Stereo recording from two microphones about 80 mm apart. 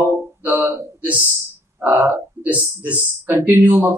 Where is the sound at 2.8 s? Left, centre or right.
Centre.